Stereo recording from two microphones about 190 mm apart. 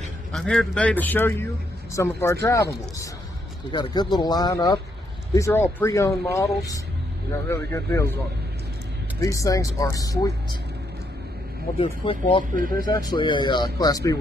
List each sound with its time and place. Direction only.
0.3 s speech: 5° left (ahead or behind)
9.2 s speech: 15° left (ahead or behind)
11.8 s speech: 25° left (ahead or behind)
12.5 s speech: 50° right (ahead or behind)
12.8 s speech: 20° left (ahead or behind)